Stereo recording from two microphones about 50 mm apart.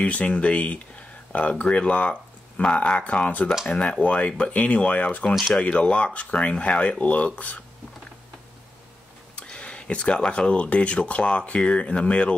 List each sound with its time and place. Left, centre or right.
0.0 s speech: left
9.4 s speech: left